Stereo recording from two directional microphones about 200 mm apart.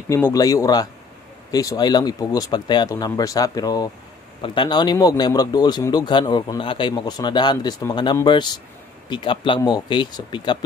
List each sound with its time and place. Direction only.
0.1 s speech: 15° left (ahead or behind)